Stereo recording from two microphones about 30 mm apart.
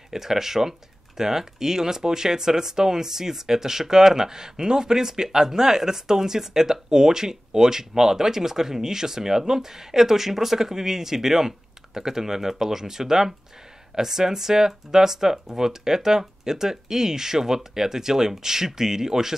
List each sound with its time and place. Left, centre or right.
0.1 s speech: centre